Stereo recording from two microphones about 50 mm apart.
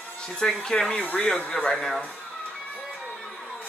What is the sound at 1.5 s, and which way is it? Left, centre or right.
Speech, centre.